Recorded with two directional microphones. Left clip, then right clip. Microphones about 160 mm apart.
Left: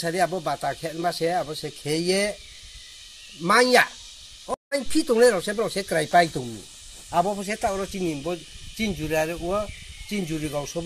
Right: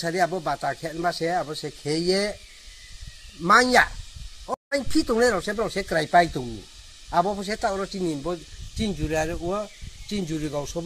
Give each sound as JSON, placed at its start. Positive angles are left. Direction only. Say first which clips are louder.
{"t": 0.0, "sound": "speech", "louder": "even", "side_deg": 10}
{"t": 3.4, "sound": "speech", "louder": "right 1 dB", "side_deg": 10}
{"t": 7.2, "sound": "speech", "louder": "even", "side_deg": 5}